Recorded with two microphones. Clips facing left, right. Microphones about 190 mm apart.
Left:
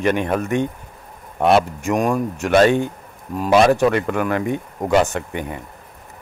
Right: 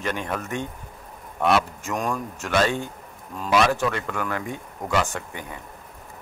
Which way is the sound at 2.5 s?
60° left (ahead or behind).